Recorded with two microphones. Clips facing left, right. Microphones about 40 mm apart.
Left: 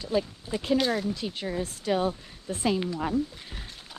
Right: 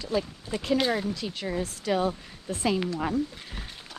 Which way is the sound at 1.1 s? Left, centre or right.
Right.